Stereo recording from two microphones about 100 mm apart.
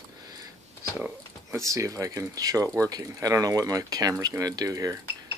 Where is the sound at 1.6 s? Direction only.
30° right (ahead or behind).